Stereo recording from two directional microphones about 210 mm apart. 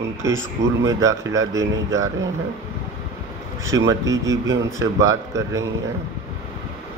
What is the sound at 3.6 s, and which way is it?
A man's voice, 15° right (ahead or behind).